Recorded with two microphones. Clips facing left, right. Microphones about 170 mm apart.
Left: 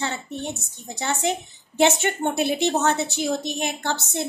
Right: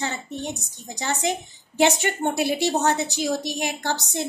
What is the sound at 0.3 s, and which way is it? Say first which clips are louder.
Speech: even; 15° right (ahead or behind).